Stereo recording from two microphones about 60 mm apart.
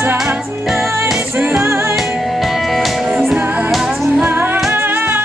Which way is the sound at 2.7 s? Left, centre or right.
Centre.